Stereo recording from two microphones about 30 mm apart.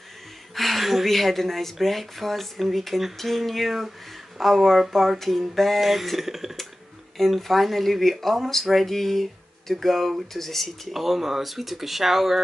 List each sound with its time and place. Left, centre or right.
0.6 s speech: centre
7.2 s speech: centre
10.9 s speech: centre